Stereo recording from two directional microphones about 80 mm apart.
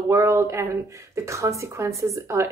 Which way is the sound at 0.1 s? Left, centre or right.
Right.